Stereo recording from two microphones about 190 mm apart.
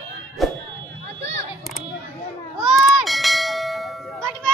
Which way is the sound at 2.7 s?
Centre (ahead or behind).